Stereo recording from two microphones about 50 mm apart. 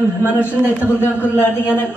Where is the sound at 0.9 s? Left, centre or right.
Left.